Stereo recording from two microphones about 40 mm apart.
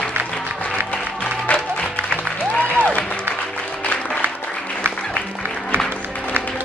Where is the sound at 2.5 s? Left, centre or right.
Left.